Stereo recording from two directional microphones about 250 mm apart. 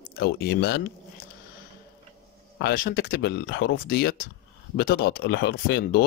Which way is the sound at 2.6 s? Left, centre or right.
Left.